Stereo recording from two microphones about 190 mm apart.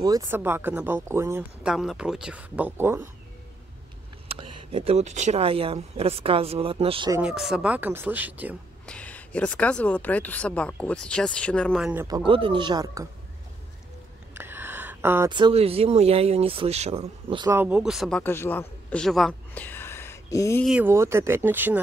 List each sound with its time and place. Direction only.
0.0 s speech: 20° right (ahead or behind)
4.3 s speech: 30° right (ahead or behind)
7.2 s speech: 5° right (ahead or behind)
8.8 s a woman's voice: 5° left (ahead or behind)
12.3 s speech: 25° right (ahead or behind)
14.3 s a sound: 10° right (ahead or behind)
15.3 s speech: 30° right (ahead or behind)
17.5 s speech: 10° right (ahead or behind)
18.2 s speech: 10° left (ahead or behind)
20.6 s speech: 10° right (ahead or behind)